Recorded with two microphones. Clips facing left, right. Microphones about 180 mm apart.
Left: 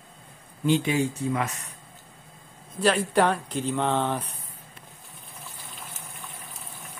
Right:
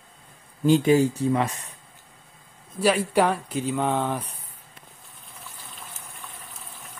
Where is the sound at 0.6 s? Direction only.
40° right (ahead or behind).